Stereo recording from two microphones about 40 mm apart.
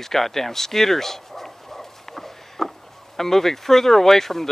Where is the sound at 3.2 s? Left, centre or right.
Centre.